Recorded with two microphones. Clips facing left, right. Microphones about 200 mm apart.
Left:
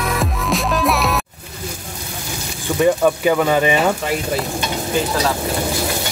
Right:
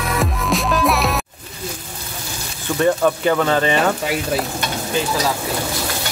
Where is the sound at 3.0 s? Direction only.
10° left (ahead or behind).